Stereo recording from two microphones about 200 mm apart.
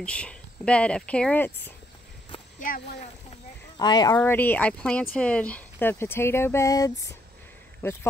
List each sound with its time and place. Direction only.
0.0 s speech: 5° left (ahead or behind)
2.6 s a child's voice: 35° left (ahead or behind)
3.7 s speech: 20° left (ahead or behind)
4.2 s speech: 10° left (ahead or behind)